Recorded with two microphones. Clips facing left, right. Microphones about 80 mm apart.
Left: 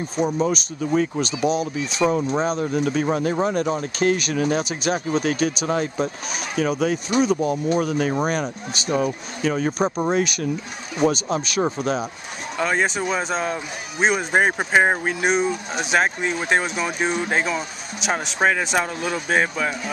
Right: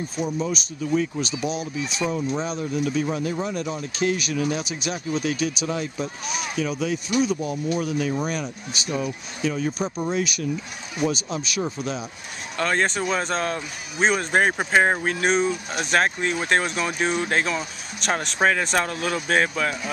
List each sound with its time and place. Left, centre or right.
0.2 s speech: left
12.5 s speech: centre